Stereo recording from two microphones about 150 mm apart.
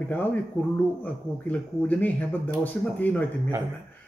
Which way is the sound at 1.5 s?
10° left (ahead or behind).